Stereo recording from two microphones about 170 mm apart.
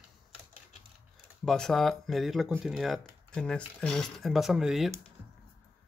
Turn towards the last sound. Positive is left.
turn(degrees=0)  # may be behind; listen again after turning